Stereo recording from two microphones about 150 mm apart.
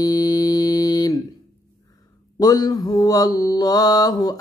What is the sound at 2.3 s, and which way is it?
Mantra, 25° left (ahead or behind).